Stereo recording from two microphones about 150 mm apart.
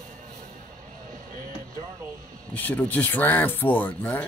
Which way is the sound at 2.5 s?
10° left (ahead or behind).